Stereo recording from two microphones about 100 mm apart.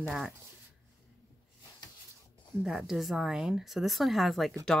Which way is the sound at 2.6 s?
5° right (ahead or behind).